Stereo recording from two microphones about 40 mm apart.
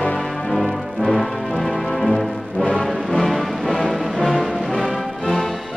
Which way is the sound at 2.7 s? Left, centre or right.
Centre.